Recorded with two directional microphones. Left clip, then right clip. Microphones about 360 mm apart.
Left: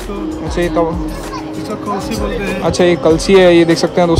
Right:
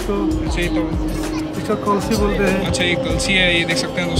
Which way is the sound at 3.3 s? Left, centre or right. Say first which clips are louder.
Left 8 dB; centre.